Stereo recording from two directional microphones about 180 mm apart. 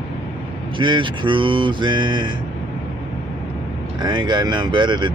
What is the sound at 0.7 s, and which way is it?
Speech, 25° right (ahead or behind).